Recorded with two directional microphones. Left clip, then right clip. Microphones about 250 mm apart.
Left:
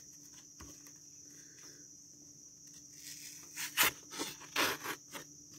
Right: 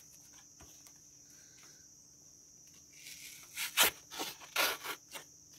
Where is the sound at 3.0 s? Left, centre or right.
Centre.